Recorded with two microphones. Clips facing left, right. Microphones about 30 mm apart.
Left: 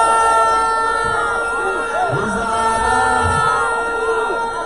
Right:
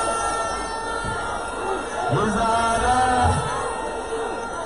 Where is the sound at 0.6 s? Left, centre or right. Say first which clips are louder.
Left 11 dB; left.